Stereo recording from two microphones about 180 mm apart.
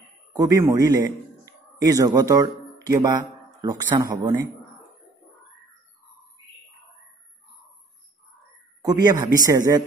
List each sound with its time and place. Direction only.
0.4 s a man's voice: 20° right (ahead or behind)
8.8 s speech: 20° right (ahead or behind)